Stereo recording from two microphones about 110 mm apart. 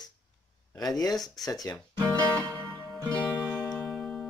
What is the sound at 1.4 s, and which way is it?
Speech, 35° left (ahead or behind).